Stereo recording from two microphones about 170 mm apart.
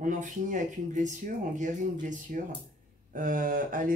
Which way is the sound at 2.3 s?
50° right (ahead or behind).